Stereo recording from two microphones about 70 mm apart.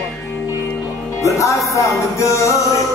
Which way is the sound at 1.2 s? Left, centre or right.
Left.